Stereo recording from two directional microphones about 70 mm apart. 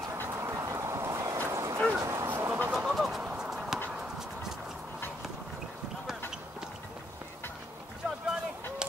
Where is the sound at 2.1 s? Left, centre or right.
Right.